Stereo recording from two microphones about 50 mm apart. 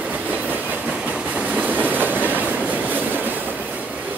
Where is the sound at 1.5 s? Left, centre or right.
Right.